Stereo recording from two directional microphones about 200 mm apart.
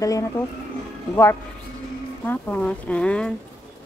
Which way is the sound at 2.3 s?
5° left (ahead or behind).